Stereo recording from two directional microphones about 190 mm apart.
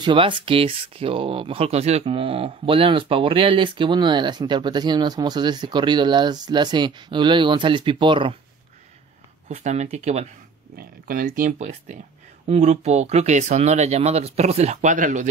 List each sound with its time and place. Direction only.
0.0 s speech: 25° right (ahead or behind)
9.5 s speech: 35° right (ahead or behind)
10.8 s speech: 45° right (ahead or behind)